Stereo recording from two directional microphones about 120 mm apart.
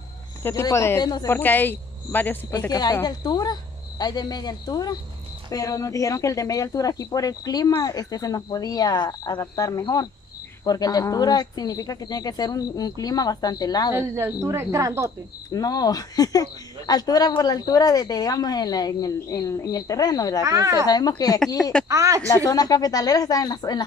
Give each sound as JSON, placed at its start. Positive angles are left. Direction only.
{"t": 0.4, "sound": "speech", "side_deg": 20}
{"t": 1.2, "sound": "speech", "side_deg": 15}
{"t": 2.7, "sound": "speech", "side_deg": 35}
{"t": 13.9, "sound": "speech", "side_deg": -20}
{"t": 15.5, "sound": "speech", "side_deg": 30}
{"t": 20.4, "sound": "speech", "side_deg": -25}
{"t": 20.8, "sound": "speech", "side_deg": 35}
{"t": 21.8, "sound": "speech", "side_deg": -25}
{"t": 22.3, "sound": "speech", "side_deg": 30}